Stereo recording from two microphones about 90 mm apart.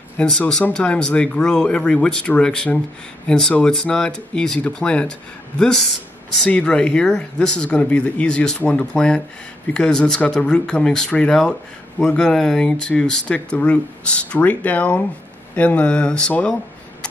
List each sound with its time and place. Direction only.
0.2 s speech: 10° left (ahead or behind)